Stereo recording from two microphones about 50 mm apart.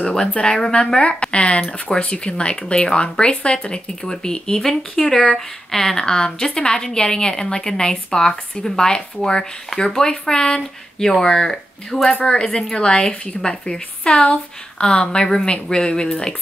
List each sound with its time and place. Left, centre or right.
0.0 s speech: centre